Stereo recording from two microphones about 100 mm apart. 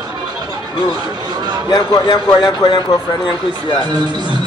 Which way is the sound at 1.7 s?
45° left (ahead or behind).